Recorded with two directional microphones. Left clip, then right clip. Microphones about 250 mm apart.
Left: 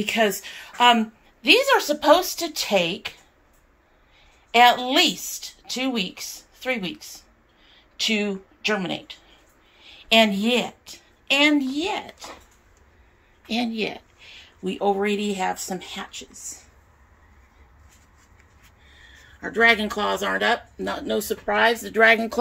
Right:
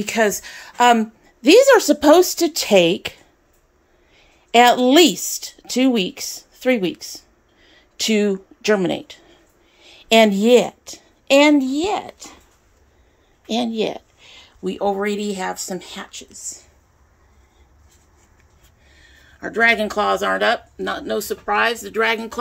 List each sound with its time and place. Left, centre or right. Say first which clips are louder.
0.0 s speech: right 3 dB; centre
1.4 s speech: right 6 dB; right
4.5 s a woman's voice: right 4 dB; right; by 12.3 s centre
13.5 s speech: right 5 dB; centre
19.4 s speech: right 2 dB; centre